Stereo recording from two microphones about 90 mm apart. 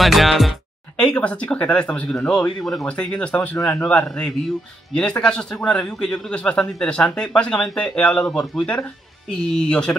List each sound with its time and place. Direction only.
0.0 s music: centre (ahead or behind)
1.0 s speech: 15° left (ahead or behind)
3.5 s speech: 35° left (ahead or behind)
3.8 s speech: 10° left (ahead or behind)